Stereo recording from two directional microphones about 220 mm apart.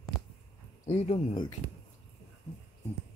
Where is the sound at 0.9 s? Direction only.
25° left (ahead or behind).